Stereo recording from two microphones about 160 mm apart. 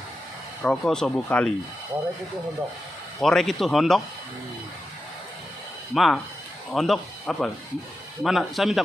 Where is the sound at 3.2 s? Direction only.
Centre (ahead or behind).